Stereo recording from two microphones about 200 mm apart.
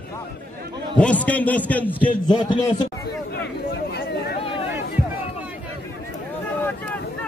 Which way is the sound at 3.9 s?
55° left (ahead or behind).